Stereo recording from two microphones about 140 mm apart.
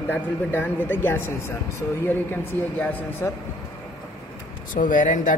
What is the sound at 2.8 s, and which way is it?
Speech, 10° left (ahead or behind).